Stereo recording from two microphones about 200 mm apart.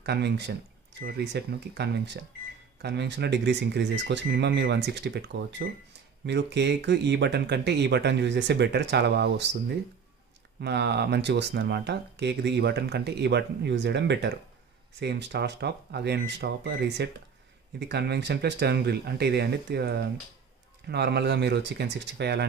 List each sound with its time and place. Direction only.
0.0 s speech: 55° right (ahead or behind)
10.6 s speech: 55° right (ahead or behind)